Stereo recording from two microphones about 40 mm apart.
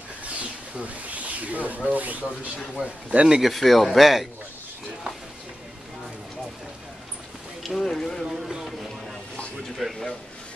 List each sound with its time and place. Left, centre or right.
0.2 s a sound: right
1.9 s speech: right
2.7 s a man's voice: right
3.4 s speech: centre
7.6 s speech: centre
8.3 s speech: centre
9.8 s speech: centre